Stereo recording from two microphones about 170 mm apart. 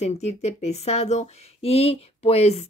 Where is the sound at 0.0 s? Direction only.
40° left (ahead or behind).